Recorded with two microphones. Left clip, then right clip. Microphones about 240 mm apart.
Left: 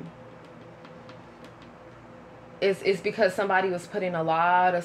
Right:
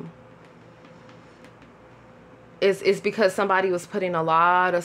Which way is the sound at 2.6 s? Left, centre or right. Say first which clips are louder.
Right 4 dB; right.